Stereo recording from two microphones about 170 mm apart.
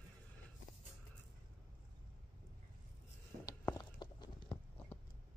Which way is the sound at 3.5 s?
20° left (ahead or behind).